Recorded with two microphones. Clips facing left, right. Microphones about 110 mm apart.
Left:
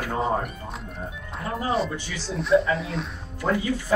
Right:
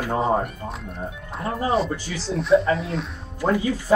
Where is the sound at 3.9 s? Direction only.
20° right (ahead or behind).